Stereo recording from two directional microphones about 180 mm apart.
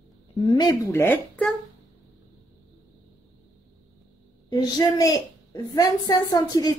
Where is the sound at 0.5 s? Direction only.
20° left (ahead or behind).